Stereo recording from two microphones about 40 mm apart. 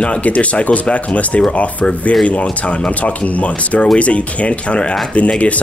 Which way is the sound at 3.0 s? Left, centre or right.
Left.